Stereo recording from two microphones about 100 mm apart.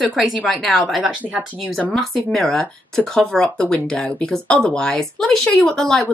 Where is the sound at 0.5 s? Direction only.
Centre (ahead or behind).